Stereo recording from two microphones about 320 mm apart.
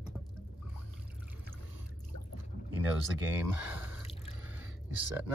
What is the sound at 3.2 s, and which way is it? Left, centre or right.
Speech, centre.